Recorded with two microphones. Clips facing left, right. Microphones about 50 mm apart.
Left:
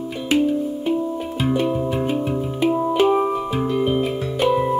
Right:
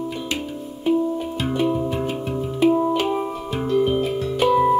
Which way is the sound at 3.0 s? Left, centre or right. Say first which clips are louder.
Left 6 dB; centre.